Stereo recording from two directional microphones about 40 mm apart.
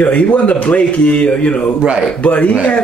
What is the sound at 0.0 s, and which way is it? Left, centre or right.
Speech, left.